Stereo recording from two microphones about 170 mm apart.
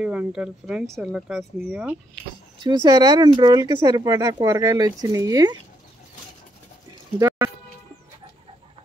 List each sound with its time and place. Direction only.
0.0 s speech: 5° right (ahead or behind)
2.8 s speech: 20° right (ahead or behind)
7.2 s speech: 15° right (ahead or behind)